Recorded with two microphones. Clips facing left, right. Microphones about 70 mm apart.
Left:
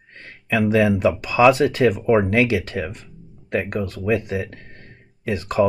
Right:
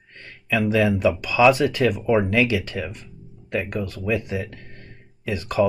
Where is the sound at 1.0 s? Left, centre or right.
Left.